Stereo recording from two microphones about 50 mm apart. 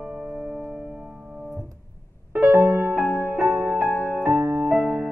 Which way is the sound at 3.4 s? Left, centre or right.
Right.